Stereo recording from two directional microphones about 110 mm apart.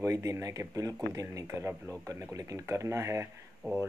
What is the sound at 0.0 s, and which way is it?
Speech, 30° right (ahead or behind).